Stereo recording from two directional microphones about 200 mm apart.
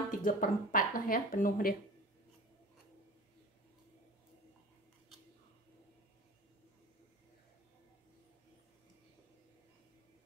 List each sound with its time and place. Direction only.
0.1 s speech: 40° left (ahead or behind)